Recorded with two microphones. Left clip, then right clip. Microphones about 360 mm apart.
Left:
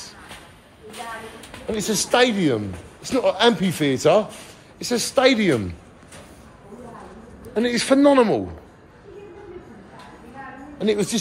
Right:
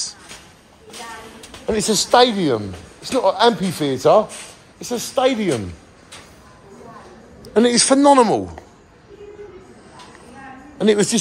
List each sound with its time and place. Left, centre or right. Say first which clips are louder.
1.7 s a man's voice: right 5 dB; right; by 5.6 s centre
7.5 s a man's voice: right 4 dB; centre
10.8 s a man's voice: right 6 dB; right